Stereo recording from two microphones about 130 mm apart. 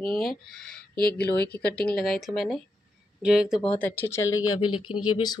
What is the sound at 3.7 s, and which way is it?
Speech, 15° left (ahead or behind).